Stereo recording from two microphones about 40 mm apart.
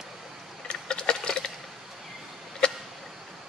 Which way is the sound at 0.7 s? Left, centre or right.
Left.